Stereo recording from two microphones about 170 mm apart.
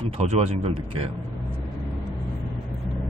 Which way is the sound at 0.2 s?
40° right (ahead or behind).